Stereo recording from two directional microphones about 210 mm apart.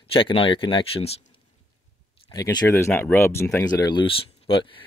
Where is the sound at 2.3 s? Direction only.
20° left (ahead or behind).